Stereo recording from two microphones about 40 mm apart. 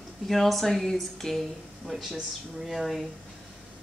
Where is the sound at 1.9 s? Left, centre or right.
Centre.